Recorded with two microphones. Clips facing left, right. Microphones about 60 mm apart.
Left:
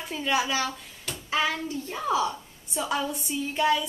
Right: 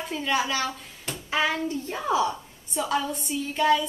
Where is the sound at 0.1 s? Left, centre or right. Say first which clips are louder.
Even; centre.